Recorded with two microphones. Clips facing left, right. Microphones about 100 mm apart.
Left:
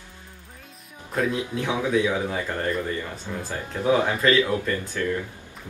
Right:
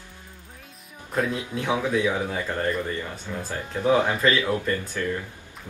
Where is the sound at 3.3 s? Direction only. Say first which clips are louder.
Even; 10° left (ahead or behind).